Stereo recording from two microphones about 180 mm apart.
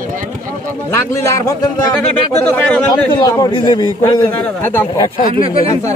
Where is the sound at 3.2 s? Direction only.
20° left (ahead or behind).